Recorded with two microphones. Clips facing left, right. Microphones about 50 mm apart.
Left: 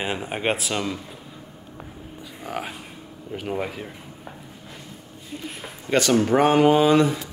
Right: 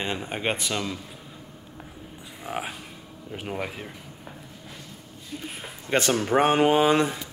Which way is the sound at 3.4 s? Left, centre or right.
Centre.